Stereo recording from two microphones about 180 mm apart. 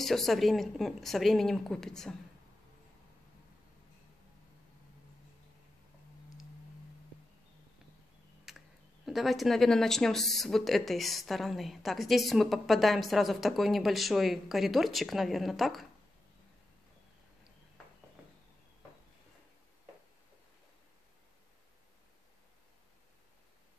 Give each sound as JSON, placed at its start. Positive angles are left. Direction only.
{"t": 0.0, "sound": "speech", "side_deg": 0}
{"t": 8.5, "sound": "speech", "side_deg": 0}